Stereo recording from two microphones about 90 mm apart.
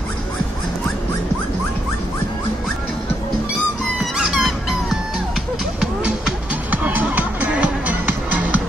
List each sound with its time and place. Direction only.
4.0 s music: 5° right (ahead or behind)
6.7 s music: 20° right (ahead or behind)